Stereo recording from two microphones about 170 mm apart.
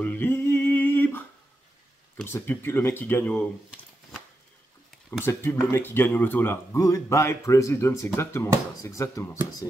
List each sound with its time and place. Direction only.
0.0 s a sound: 10° left (ahead or behind)
2.1 s speech: 10° left (ahead or behind)
5.2 s speech: 15° left (ahead or behind)